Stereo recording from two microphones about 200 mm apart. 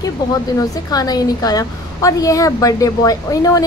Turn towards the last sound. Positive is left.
turn(degrees=15)  # may be behind; listen again after turning